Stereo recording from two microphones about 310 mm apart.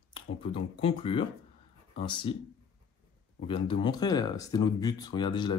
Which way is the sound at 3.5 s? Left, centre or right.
Centre.